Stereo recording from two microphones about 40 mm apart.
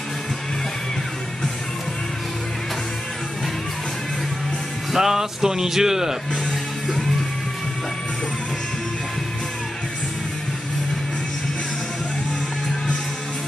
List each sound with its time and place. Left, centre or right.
4.9 s speech: centre